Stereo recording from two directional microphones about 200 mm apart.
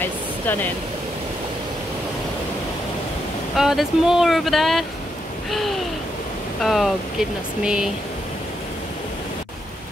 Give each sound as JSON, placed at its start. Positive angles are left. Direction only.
{"t": 0.0, "sound": "a sound", "side_deg": 10}
{"t": 3.5, "sound": "speech", "side_deg": 0}
{"t": 6.6, "sound": "speech", "side_deg": 0}